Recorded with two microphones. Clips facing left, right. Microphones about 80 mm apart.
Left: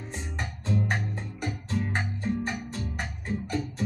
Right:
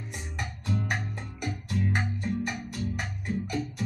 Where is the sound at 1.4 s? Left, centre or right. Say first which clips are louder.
Even; left.